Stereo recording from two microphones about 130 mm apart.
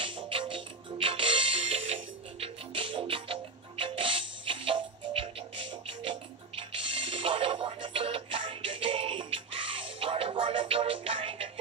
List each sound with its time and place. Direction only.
0.0 s music: 45° right (ahead or behind)